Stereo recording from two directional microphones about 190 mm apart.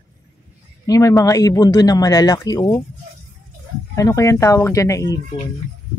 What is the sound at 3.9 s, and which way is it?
Speech, 15° left (ahead or behind).